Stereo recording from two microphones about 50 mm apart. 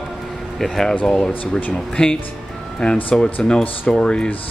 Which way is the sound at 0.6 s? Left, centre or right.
Centre.